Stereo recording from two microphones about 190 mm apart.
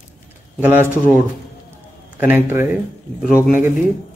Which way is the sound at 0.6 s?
10° right (ahead or behind).